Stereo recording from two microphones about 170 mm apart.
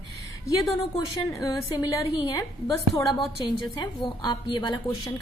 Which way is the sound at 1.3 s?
20° left (ahead or behind).